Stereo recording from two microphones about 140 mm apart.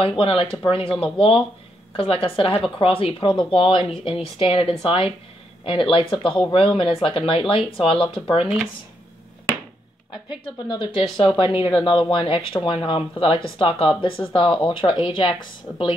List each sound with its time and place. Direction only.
0.0 s speech: 40° left (ahead or behind)
10.7 s speech: 35° left (ahead or behind)